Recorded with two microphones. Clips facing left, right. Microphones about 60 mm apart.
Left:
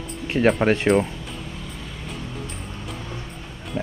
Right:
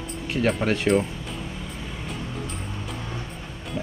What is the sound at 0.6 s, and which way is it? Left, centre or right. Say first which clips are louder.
Speech: left 5 dB; left.